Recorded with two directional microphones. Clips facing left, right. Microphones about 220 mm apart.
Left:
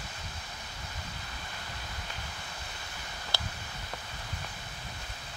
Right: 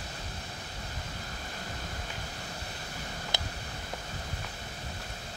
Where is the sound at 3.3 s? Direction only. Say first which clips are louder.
Even; 20° right (ahead or behind).